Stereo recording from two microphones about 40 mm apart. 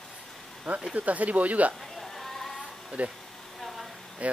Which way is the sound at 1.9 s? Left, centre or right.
Centre.